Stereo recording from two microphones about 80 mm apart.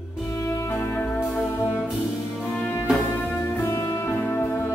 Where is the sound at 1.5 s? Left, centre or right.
Left.